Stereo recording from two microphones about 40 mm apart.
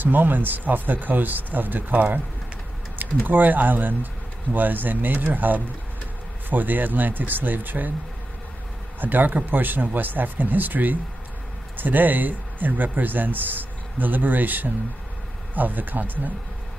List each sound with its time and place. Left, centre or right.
0.0 s speech: right
9.0 s speech: right